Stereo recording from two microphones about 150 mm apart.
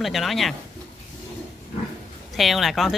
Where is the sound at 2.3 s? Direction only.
Centre (ahead or behind).